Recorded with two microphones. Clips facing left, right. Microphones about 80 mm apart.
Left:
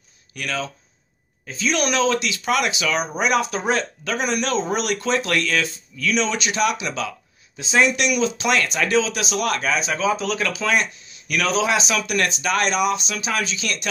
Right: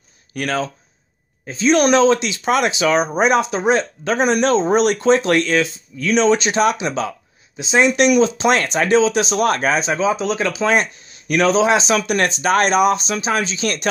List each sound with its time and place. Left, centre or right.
0.3 s speech: right
1.4 s speech: right
7.9 s speech: right